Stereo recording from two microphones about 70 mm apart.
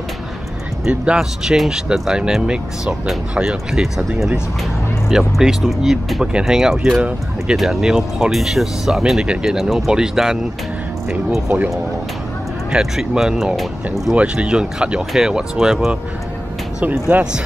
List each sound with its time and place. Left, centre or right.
0.8 s speech: centre
7.0 s speech: centre
7.5 s speech: centre
12.7 s speech: centre
14.1 s speech: centre
16.8 s speech: right